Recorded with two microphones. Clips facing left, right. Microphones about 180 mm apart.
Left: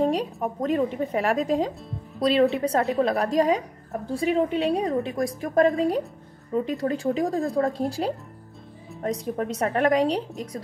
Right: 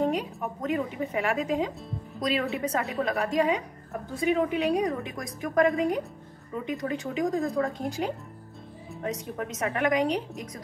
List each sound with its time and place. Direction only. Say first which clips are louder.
0.0 s a woman's voice: left 4 dB; 35° left (ahead or behind)